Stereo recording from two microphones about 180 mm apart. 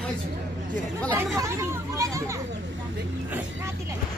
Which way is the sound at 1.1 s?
15° right (ahead or behind).